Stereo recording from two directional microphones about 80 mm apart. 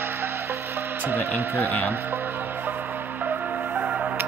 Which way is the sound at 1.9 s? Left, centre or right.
Right.